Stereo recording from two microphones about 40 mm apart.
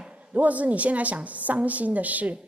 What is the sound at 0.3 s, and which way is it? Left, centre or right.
A woman's voice, right.